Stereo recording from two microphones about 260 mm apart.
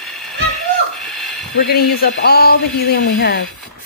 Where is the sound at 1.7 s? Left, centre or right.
Left.